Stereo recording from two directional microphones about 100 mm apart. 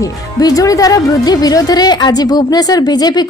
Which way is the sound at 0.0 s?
35° left (ahead or behind).